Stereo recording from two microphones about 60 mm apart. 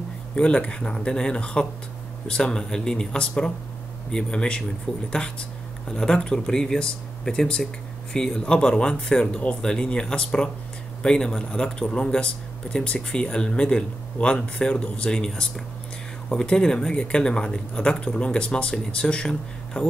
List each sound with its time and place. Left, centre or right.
0.4 s speech: centre